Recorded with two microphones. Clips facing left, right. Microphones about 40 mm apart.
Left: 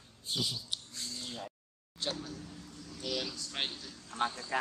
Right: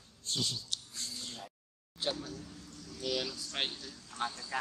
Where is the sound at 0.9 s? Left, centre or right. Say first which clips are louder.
Left 1 dB; centre.